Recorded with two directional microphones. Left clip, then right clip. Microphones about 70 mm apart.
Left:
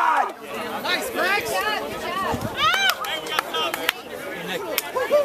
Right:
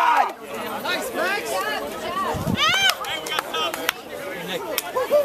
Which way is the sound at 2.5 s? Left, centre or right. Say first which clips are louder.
Right 1 dB; right.